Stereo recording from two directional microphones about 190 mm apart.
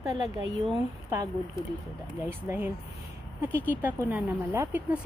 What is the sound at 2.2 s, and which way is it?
A woman's voice, 10° right (ahead or behind).